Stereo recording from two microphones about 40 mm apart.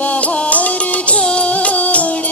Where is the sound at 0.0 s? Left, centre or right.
Left.